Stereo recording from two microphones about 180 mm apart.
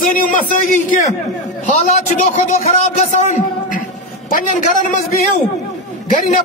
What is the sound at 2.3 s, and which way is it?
A man's voice, 35° left (ahead or behind).